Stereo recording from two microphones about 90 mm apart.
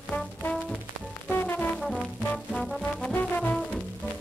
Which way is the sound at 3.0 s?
15° left (ahead or behind).